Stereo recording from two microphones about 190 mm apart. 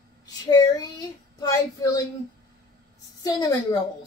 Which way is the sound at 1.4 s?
20° left (ahead or behind).